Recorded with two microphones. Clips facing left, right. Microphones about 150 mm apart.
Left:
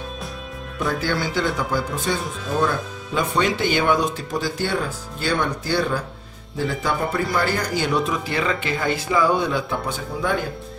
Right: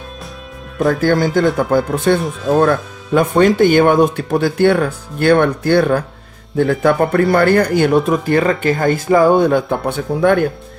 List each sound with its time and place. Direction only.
0.7 s a man's voice: 45° right (ahead or behind)